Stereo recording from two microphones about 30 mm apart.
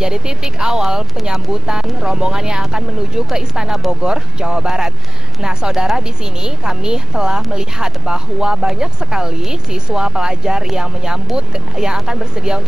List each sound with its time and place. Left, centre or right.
0.0 s speech: right